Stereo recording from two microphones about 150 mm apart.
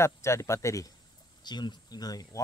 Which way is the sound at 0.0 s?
20° left (ahead or behind).